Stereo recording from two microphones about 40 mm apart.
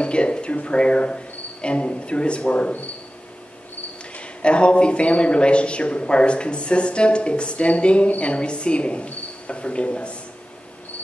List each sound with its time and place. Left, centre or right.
0.0 s speech: left
4.1 s speech: left